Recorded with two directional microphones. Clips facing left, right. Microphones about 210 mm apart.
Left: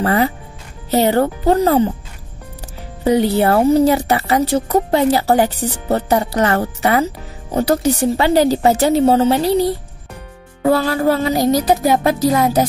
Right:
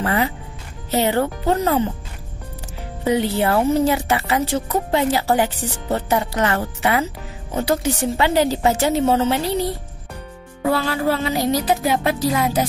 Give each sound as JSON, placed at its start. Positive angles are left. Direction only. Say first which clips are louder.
{"t": 0.0, "sound": "speech", "louder": "left 5 dB", "side_deg": 40}
{"t": 3.1, "sound": "speech", "louder": "left 5 dB", "side_deg": 40}